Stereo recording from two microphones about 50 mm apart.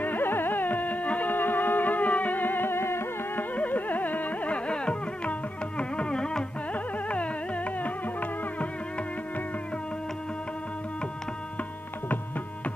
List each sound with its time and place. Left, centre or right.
0.0 s carnatic music: left
1.3 s music: left
3.3 s carnatic music: left; by 6.4 s centre
6.7 s music: left